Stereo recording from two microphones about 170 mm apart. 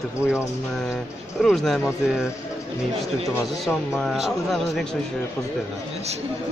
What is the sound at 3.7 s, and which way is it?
Speech, centre (ahead or behind).